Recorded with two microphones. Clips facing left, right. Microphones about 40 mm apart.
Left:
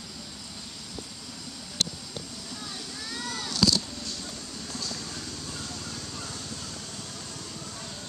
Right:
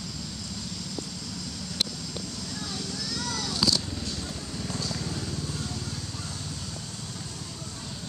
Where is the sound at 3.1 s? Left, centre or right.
Left.